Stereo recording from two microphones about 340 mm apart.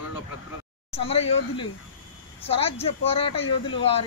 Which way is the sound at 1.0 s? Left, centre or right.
Centre.